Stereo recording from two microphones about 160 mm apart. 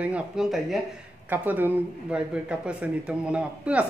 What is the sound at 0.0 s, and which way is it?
Speech, 5° right (ahead or behind).